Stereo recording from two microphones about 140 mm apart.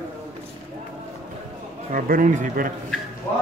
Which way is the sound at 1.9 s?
70° right (ahead or behind).